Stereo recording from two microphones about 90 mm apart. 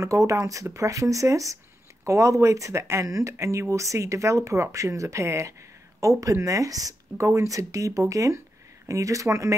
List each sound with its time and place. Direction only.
0.0 s speech: 35° right (ahead or behind)